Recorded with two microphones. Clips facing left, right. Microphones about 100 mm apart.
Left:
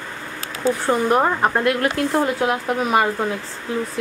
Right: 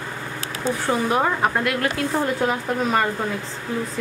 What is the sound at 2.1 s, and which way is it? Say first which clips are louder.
Speech: left 1 dB; 5° left (ahead or behind).